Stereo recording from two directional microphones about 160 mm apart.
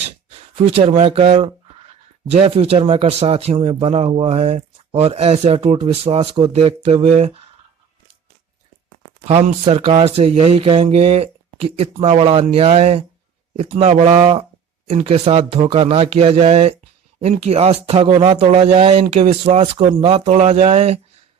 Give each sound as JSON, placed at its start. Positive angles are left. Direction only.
{"t": 0.7, "sound": "a man's voice", "side_deg": -35}
{"t": 9.7, "sound": "a man's voice", "side_deg": -35}